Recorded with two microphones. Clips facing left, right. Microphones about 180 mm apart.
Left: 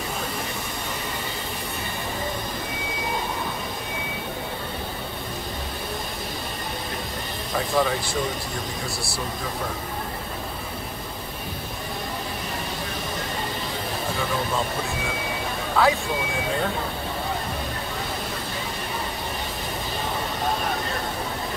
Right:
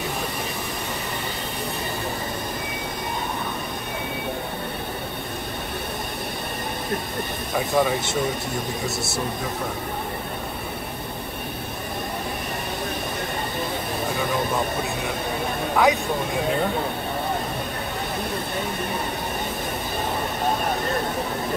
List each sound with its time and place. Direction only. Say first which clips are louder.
7.7 s speech: right 2 dB; 20° right (ahead or behind)
15.7 s speech: right 1 dB; 15° right (ahead or behind)